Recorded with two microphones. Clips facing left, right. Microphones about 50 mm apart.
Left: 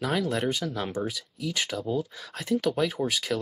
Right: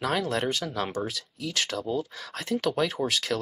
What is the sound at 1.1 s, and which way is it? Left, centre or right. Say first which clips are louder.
Speech: left 1 dB; centre.